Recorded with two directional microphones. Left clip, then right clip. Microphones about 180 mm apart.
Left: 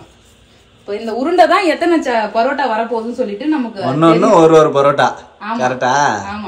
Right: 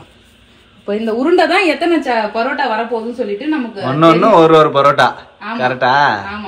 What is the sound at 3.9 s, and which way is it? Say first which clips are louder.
A man's voice: right 1 dB; 15° left (ahead or behind).